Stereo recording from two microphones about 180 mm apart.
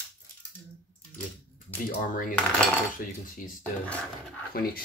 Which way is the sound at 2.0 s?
50° left (ahead or behind).